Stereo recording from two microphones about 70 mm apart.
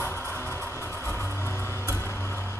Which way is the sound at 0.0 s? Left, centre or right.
Left.